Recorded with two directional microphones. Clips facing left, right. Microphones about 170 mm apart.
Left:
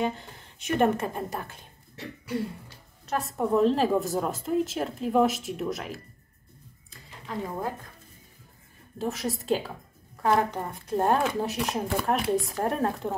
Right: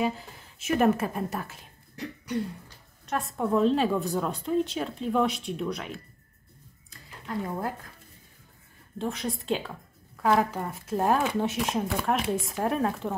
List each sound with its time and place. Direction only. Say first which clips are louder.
0.0 s a woman's voice: right 1 dB; 5° right (ahead or behind)
8.9 s speech: left 1 dB; centre (ahead or behind)